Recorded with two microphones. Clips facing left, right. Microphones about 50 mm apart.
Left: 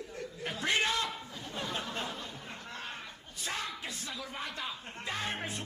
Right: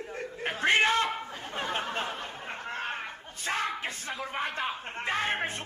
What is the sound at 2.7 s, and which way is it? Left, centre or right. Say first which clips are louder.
Chatter: right 8 dB; right.